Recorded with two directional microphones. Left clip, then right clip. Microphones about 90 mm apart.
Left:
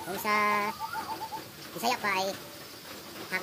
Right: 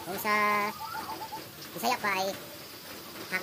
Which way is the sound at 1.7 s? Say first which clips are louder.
Even; 5° left (ahead or behind).